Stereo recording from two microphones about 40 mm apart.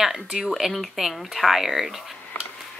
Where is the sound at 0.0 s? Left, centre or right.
Centre.